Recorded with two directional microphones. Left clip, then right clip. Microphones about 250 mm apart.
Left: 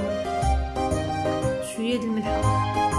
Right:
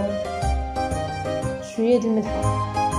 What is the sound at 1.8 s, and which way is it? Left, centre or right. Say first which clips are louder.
Speech: right 10 dB; centre.